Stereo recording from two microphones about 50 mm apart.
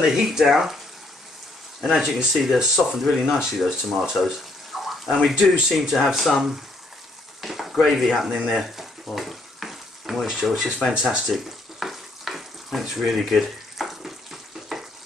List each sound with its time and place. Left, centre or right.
0.1 s speech: centre
2.0 s speech: centre
4.8 s a sound: centre
5.7 s speech: centre
7.4 s a sound: centre
7.7 s speech: centre
8.5 s frying: centre
10.9 s speech: centre
11.2 s frying: centre